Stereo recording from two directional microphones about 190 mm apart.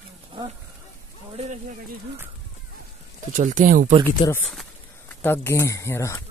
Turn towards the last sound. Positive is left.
turn(degrees=15)  # may be behind; listen again after turning